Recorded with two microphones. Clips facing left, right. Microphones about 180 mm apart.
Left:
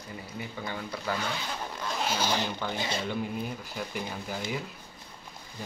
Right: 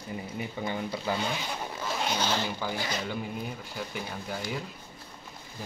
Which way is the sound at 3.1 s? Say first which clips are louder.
Left 2 dB; centre (ahead or behind).